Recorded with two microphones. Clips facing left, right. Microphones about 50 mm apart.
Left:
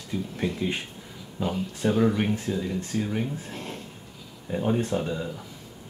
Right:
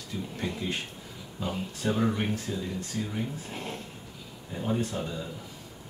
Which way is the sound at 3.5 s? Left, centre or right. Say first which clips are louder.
Even; centre.